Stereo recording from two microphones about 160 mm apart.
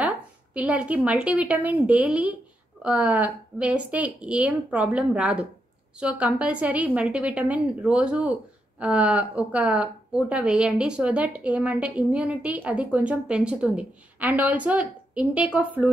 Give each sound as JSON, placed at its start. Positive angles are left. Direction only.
{"t": 0.6, "sound": "a woman's voice", "side_deg": -10}